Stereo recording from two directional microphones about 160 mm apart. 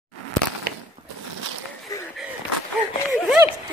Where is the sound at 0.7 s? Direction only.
65° right (ahead or behind).